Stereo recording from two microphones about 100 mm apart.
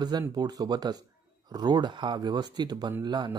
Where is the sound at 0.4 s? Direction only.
40° right (ahead or behind).